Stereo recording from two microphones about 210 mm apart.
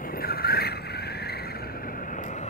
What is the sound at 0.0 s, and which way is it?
Vehicle, 45° left (ahead or behind).